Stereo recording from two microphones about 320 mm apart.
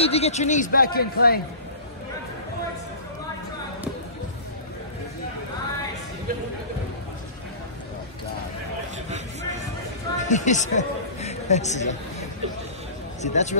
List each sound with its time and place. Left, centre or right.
0.0 s speech: centre
10.1 s a woman's voice: left